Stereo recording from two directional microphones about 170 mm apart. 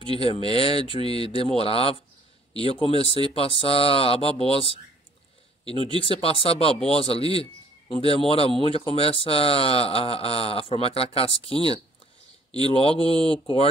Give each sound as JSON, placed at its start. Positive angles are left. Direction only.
{"t": 0.1, "sound": "speech", "side_deg": 35}
{"t": 5.9, "sound": "speech", "side_deg": 35}
{"t": 12.6, "sound": "speech", "side_deg": 35}